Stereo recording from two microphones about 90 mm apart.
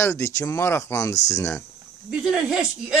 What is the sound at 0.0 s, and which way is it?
Speech, 35° left (ahead or behind).